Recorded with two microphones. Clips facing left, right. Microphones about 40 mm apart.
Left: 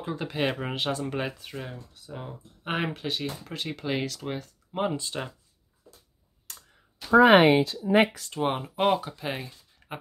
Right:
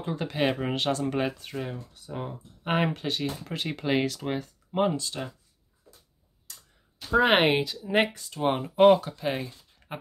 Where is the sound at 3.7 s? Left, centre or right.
Centre.